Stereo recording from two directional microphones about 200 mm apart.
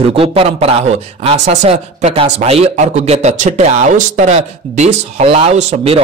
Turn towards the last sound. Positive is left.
turn(degrees=-35)  # may be behind; listen again after turning